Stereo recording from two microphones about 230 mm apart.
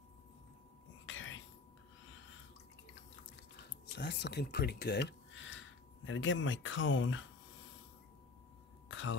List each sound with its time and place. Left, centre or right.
1.0 s whispering: left
3.8 s speech: left
8.8 s a sound: left